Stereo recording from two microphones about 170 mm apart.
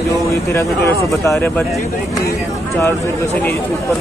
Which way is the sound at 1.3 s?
Centre (ahead or behind).